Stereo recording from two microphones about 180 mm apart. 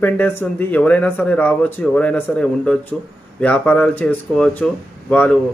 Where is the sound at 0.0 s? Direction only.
10° left (ahead or behind).